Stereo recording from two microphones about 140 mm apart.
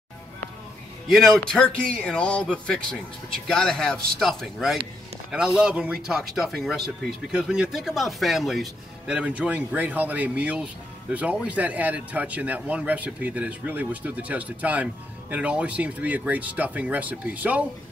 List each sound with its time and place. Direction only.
1.0 s a man's voice: centre (ahead or behind)